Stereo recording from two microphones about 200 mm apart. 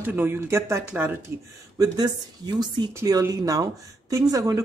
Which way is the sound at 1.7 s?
20° right (ahead or behind).